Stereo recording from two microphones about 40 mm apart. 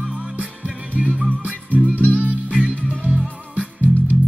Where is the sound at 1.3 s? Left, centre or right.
Right.